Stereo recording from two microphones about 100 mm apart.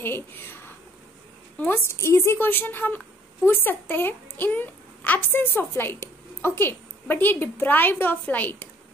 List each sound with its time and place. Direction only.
1.6 s a child's voice: 25° left (ahead or behind)